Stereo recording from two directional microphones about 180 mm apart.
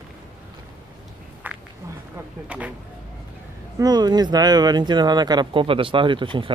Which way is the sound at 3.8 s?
25° right (ahead or behind).